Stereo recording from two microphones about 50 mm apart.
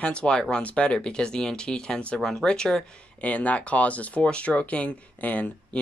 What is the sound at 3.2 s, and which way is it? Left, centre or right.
Speech, left.